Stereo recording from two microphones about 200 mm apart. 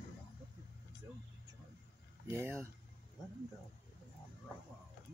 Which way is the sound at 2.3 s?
15° right (ahead or behind).